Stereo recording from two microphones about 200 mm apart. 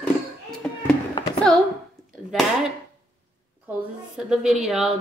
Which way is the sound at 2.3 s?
Centre (ahead or behind).